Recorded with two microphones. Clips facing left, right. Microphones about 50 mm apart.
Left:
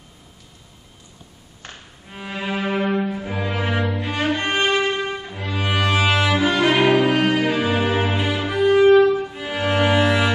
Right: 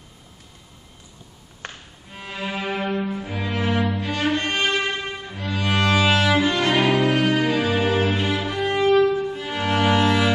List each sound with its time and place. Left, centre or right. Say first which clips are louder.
2.0 s violin: left 3 dB; centre
2.9 s cello: left 3 dB; centre
4.4 s music: left 3 dB; centre
5.4 s cello: even; centre